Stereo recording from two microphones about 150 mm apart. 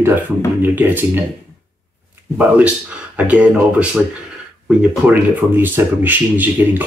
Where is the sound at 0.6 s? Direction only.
15° right (ahead or behind).